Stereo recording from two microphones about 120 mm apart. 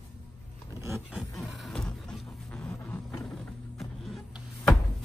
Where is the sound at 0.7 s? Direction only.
25° right (ahead or behind).